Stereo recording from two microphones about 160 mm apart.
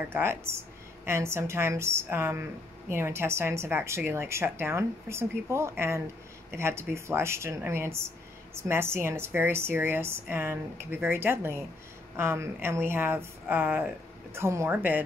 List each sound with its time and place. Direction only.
0.1 s a woman's voice: 15° right (ahead or behind)